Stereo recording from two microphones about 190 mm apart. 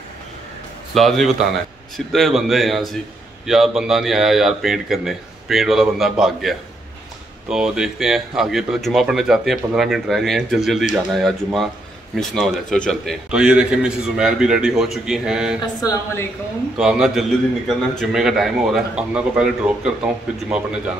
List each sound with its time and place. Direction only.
0.9 s a man's voice: centre (ahead or behind)
15.6 s speech: 20° left (ahead or behind)
16.7 s a man's voice: 5° right (ahead or behind)